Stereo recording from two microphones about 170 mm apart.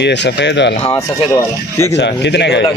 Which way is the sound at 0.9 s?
15° left (ahead or behind).